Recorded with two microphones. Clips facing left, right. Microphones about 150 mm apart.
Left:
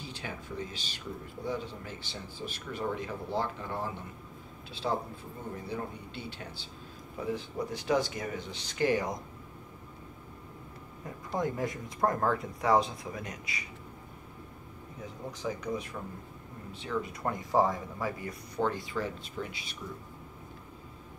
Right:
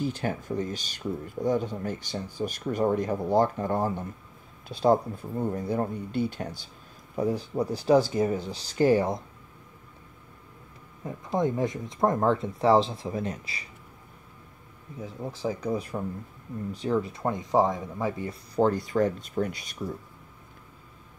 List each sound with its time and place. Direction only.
0.0 s speech: 50° right (ahead or behind); by 9.2 s 30° right (ahead or behind)
11.3 s speech: 20° right (ahead or behind)
15.3 s speech: 30° right (ahead or behind)
18.6 s speech: 40° right (ahead or behind)